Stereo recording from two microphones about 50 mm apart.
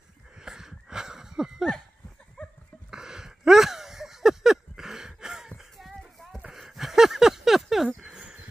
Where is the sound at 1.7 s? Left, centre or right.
Centre.